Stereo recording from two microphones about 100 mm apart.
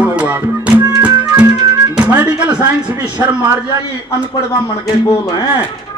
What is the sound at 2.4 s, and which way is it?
Speech, 50° right (ahead or behind).